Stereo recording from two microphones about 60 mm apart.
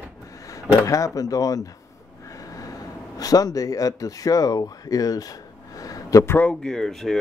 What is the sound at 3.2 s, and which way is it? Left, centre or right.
Speech, left.